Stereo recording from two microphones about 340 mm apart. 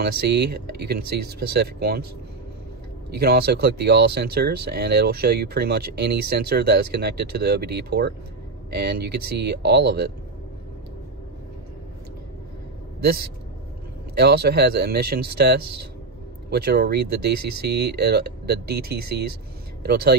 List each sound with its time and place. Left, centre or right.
0.3 s speech: right
3.1 s speech: right
14.1 s speech: right
15.6 s speech: right
16.4 s speech: right
17.3 s speech: right
17.6 s speech: right